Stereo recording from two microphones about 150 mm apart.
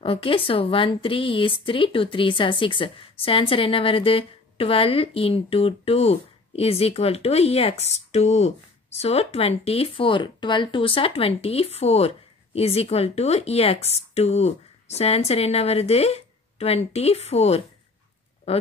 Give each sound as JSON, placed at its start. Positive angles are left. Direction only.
{"t": 0.0, "sound": "a woman's voice", "side_deg": 35}